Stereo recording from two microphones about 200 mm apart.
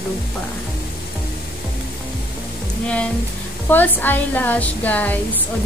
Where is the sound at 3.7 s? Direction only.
10° left (ahead or behind).